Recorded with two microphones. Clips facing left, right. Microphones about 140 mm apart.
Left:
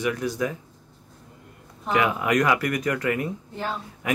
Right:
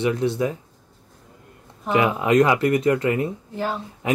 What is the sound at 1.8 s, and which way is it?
A man's voice, 25° right (ahead or behind).